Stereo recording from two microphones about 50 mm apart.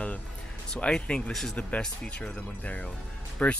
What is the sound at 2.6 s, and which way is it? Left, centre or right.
Speech, left.